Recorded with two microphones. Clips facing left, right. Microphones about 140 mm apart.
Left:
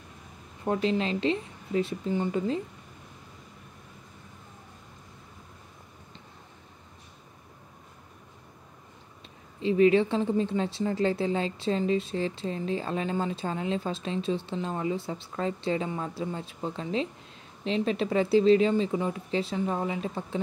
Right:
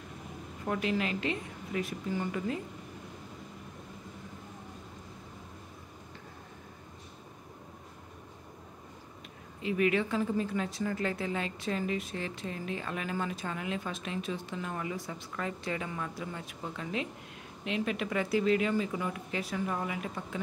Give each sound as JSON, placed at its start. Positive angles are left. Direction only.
{"t": 0.7, "sound": "speech", "side_deg": 25}
{"t": 9.6, "sound": "speech", "side_deg": 30}